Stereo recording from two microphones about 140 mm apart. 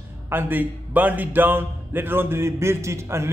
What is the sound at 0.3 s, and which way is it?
A man's voice, 15° right (ahead or behind).